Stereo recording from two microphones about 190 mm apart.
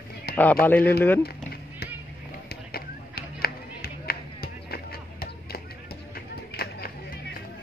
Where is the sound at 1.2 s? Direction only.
55° left (ahead or behind).